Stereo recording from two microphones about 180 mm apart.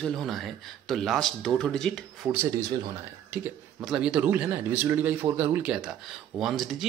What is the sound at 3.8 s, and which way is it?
Speech, 5° right (ahead or behind).